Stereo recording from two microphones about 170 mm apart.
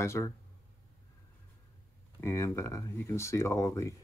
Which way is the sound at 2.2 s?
15° left (ahead or behind).